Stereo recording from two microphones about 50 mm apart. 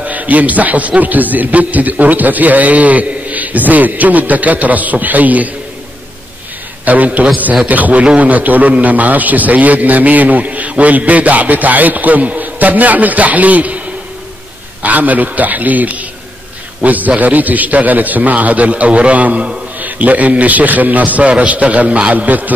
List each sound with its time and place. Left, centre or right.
0.0 s a man's voice: right
6.8 s a man's voice: right